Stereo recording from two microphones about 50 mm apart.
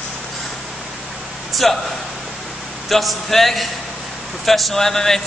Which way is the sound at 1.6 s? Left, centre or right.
Centre.